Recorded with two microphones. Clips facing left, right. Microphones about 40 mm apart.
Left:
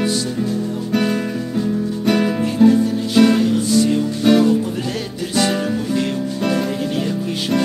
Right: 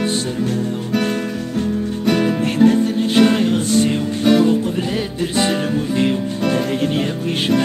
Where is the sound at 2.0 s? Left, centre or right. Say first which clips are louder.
Even; centre.